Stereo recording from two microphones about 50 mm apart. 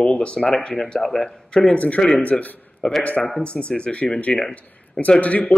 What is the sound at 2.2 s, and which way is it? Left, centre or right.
A man's voice, left.